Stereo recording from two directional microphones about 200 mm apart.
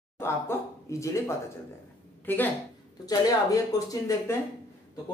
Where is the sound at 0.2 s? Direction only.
15° left (ahead or behind).